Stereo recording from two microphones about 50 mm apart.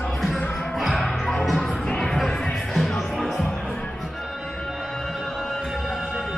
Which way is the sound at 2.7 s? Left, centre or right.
Centre.